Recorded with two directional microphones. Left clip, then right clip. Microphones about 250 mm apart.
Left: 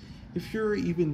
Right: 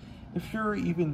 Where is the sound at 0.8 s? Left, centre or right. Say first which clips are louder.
Left 2 dB; left.